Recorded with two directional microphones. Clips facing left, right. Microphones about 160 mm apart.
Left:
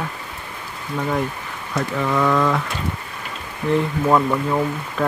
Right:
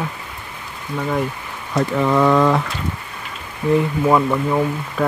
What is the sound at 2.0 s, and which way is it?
Speech, 30° right (ahead or behind).